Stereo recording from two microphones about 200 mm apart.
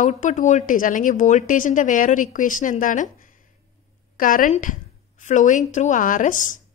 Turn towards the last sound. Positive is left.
turn(degrees=40)  # may be behind; listen again after turning